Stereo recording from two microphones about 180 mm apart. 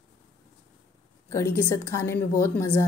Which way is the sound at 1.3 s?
15° left (ahead or behind).